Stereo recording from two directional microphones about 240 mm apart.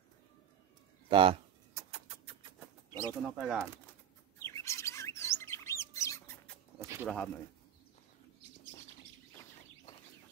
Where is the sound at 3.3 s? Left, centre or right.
Centre.